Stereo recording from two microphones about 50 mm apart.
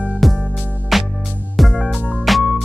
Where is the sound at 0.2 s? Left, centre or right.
Centre.